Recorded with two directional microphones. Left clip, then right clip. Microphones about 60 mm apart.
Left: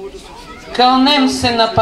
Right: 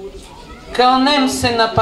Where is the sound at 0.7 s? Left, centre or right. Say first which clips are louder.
Left 1 dB; centre.